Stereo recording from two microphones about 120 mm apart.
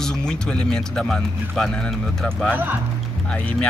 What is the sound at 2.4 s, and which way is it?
Speech, 15° right (ahead or behind).